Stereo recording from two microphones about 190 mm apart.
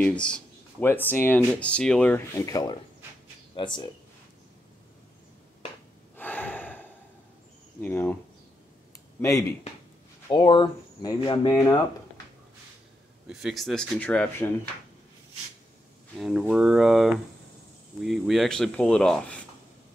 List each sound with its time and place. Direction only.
0.0 s speech: 5° left (ahead or behind); by 3.9 s 25° left (ahead or behind)
6.1 s gasp: 10° left (ahead or behind)
7.8 s speech: 10° left (ahead or behind)
10.3 s speech: 25° left (ahead or behind)
13.3 s speech: centre (ahead or behind)
16.2 s speech: 5° right (ahead or behind)